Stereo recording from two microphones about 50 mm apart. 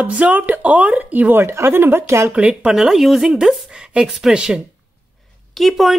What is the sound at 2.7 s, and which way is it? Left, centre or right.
A woman's voice, centre.